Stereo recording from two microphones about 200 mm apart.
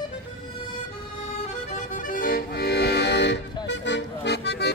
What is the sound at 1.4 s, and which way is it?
Accordion, 40° left (ahead or behind).